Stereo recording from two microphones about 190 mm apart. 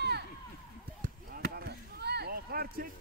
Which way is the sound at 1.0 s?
55° right (ahead or behind).